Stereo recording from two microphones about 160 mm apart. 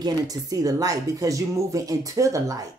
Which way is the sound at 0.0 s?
25° right (ahead or behind).